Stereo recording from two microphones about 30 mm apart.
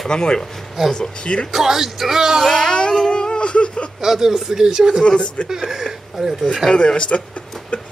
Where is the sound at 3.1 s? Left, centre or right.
Left.